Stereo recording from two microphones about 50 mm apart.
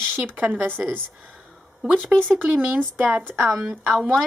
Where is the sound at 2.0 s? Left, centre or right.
Right.